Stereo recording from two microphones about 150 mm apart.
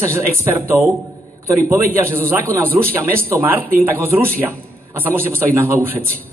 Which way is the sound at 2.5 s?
15° right (ahead or behind).